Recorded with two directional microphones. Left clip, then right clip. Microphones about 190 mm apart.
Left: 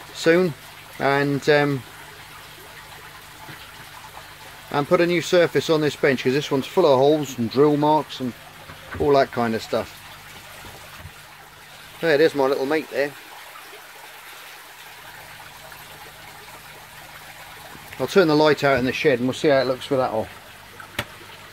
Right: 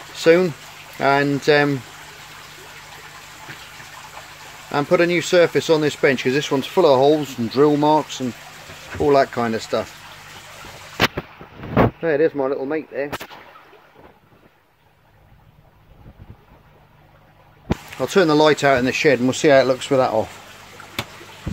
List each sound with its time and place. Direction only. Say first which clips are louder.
0.1 s speech: right 4 dB; 5° right (ahead or behind)
4.6 s speech: right 2 dB; 5° right (ahead or behind)
9.1 s speech: right 2 dB; centre (ahead or behind)
12.0 s speech: left 1 dB; 10° left (ahead or behind)
17.9 s speech: right 1 dB; 5° right (ahead or behind)